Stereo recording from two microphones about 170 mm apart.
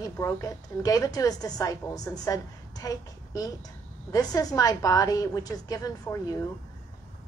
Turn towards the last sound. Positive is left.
turn(degrees=20)  # may be behind; listen again after turning